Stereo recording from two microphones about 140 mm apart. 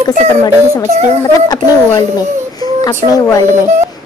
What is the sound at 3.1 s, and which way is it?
Speech, 25° left (ahead or behind).